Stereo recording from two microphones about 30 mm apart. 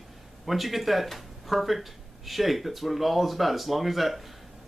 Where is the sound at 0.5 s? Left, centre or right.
Centre.